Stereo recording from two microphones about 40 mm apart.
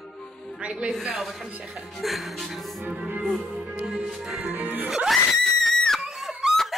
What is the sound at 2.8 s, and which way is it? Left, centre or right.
Music, right.